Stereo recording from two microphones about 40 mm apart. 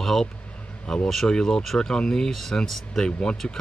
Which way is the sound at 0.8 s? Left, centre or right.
Left.